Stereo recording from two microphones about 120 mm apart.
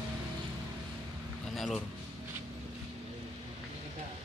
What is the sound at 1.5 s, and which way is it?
Speech, centre (ahead or behind).